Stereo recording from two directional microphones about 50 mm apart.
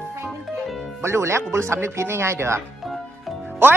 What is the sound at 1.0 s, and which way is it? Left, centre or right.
Speech, right.